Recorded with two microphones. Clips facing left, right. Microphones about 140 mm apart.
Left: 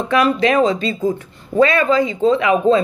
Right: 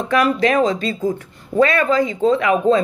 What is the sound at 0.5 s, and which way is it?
Speech, 25° left (ahead or behind).